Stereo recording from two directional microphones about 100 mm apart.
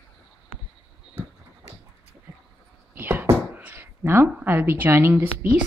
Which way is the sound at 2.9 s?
20° right (ahead or behind).